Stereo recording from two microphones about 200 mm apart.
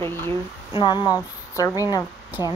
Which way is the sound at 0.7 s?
20° left (ahead or behind).